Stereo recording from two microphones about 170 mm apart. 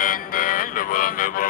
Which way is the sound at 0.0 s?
55° left (ahead or behind).